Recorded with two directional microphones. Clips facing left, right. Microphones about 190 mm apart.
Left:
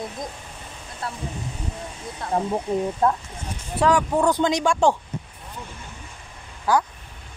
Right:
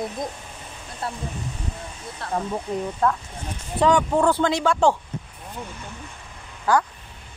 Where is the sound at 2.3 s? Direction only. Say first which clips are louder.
Left 3 dB; 25° left (ahead or behind).